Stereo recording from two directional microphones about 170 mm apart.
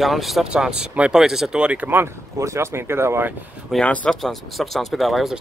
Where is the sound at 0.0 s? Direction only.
Centre (ahead or behind).